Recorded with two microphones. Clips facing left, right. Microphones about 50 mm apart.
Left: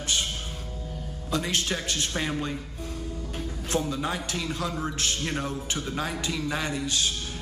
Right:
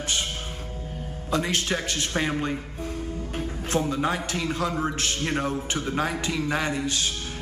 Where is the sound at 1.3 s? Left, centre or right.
Right.